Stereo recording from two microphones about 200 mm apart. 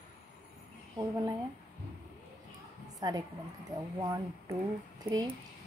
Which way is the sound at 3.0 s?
20° right (ahead or behind).